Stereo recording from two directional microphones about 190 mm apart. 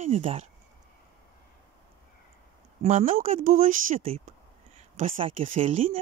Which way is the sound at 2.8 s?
45° right (ahead or behind).